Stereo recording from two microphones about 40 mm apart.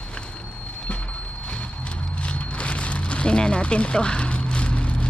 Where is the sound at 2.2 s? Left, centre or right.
Left.